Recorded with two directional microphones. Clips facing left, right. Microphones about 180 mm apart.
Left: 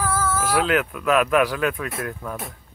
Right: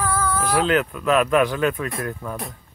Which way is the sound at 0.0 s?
5° left (ahead or behind).